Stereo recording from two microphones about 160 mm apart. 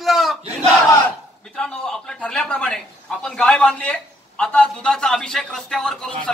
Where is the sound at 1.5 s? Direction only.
5° left (ahead or behind).